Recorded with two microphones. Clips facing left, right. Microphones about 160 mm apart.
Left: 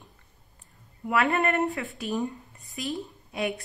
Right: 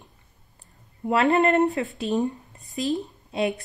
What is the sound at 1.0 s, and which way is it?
A woman's voice, 25° right (ahead or behind).